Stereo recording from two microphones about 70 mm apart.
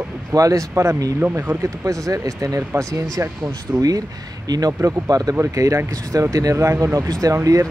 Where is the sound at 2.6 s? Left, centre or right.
Right.